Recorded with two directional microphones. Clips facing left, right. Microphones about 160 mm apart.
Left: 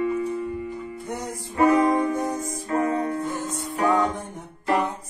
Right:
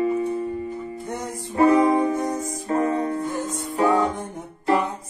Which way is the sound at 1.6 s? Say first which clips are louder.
Right 2 dB; 30° right (ahead or behind).